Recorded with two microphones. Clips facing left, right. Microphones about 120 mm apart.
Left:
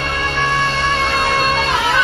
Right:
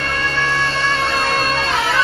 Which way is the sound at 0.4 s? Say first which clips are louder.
Left 3 dB; 15° left (ahead or behind).